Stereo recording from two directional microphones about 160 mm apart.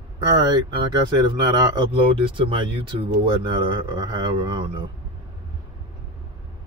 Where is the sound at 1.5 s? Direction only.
25° right (ahead or behind).